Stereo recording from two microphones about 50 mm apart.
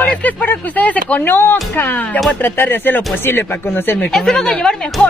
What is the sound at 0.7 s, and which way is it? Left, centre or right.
Speech, left.